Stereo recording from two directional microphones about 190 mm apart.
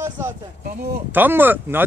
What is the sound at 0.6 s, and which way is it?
Speech, 55° right (ahead or behind).